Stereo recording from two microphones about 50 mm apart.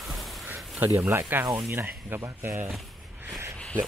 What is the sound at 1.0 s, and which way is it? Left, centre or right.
Speech, right.